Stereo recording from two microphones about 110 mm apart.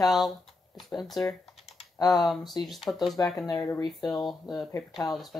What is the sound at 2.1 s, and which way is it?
Speech, centre (ahead or behind).